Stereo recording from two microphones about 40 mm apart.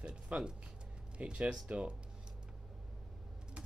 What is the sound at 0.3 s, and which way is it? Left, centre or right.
Speech, right.